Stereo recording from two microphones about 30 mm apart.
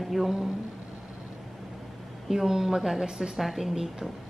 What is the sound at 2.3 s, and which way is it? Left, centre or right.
A woman's voice, centre.